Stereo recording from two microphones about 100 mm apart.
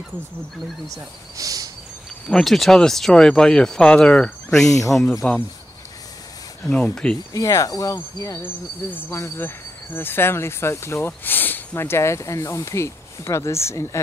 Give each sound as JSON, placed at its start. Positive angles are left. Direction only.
{"t": 0.8, "sound": "speech", "side_deg": -35}
{"t": 2.2, "sound": "speech", "side_deg": 5}
{"t": 4.6, "sound": "cricket", "side_deg": 35}
{"t": 5.2, "sound": "speech", "side_deg": 10}
{"t": 6.6, "sound": "speech", "side_deg": 10}
{"t": 7.3, "sound": "cricket", "side_deg": 35}
{"t": 8.9, "sound": "speech", "side_deg": 25}